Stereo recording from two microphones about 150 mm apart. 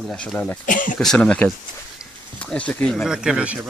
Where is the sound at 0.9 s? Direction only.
5° left (ahead or behind).